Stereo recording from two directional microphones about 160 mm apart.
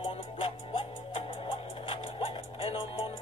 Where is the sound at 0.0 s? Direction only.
35° left (ahead or behind).